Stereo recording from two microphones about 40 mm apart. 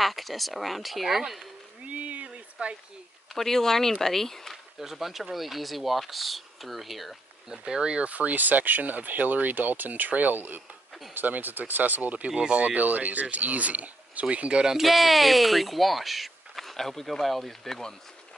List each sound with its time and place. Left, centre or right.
0.0 s speech: centre
1.9 s a sound: right
3.3 s speech: centre
4.7 s speech: centre
7.4 s speech: centre
8.1 s speech: right
12.3 s speech: right
12.7 s speech: right
14.8 s speech: centre